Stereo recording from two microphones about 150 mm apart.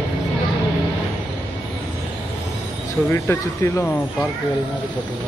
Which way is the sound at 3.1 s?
15° left (ahead or behind).